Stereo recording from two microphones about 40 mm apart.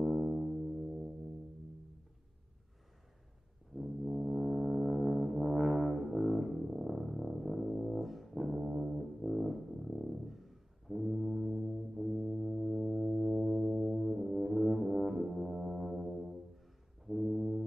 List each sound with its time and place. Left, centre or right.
0.0 s music: centre
3.7 s brass instrument: centre
12.0 s music: centre
17.0 s brass instrument: centre